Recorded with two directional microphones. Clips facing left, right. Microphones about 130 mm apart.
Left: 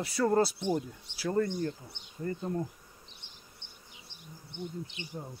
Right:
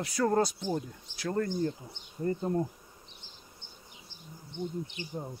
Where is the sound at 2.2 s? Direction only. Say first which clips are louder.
Right 4 dB; 30° right (ahead or behind).